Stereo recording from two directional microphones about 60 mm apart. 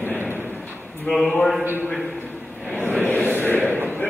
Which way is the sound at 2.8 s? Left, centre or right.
Left.